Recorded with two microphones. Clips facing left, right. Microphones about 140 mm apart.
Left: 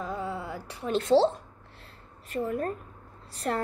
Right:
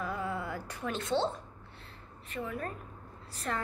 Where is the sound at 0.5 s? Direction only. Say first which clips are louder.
Left 1 dB; 10° left (ahead or behind).